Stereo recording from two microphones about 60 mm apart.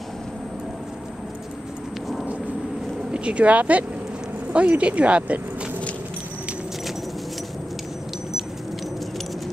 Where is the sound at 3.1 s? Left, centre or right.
Centre.